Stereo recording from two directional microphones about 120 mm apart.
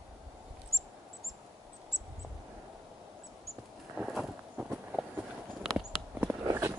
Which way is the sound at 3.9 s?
5° right (ahead or behind).